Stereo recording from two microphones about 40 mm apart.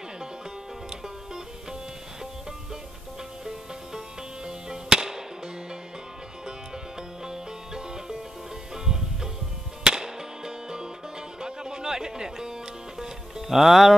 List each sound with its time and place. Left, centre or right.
1.0 s music: centre
4.5 s music: centre
7.2 s music: centre